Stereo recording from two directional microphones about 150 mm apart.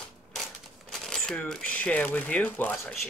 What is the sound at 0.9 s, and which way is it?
Speech, 5° left (ahead or behind).